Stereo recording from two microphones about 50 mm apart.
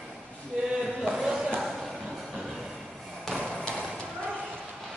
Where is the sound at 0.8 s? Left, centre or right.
Centre.